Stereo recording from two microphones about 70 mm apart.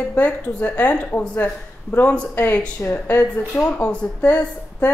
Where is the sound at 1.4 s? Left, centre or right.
Left.